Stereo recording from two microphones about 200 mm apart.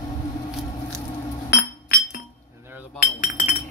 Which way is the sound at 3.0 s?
40° left (ahead or behind).